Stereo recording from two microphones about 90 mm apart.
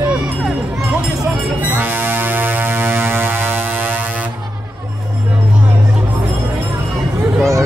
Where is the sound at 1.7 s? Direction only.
20° right (ahead or behind).